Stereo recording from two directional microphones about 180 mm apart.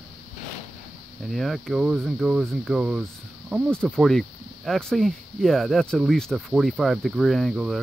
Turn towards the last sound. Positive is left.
turn(degrees=0)  # may be behind; listen again after turning